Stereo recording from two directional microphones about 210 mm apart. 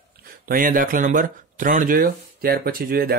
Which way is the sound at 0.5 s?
40° right (ahead or behind).